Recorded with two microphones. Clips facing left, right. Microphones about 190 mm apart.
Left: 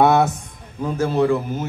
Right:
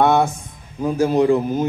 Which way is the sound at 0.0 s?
5° left (ahead or behind).